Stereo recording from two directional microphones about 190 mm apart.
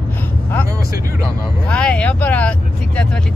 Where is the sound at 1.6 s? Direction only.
5° left (ahead or behind).